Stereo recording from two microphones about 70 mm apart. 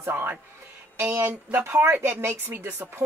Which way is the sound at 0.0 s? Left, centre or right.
Right.